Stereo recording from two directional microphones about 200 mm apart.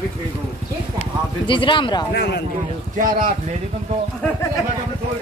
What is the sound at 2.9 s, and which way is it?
Speech, 45° right (ahead or behind).